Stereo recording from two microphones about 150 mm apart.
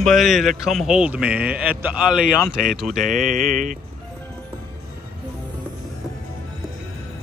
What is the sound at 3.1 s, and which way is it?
Mantra, 60° right (ahead or behind).